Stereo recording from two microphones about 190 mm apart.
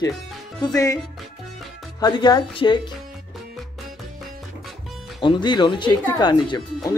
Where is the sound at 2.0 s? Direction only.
25° left (ahead or behind).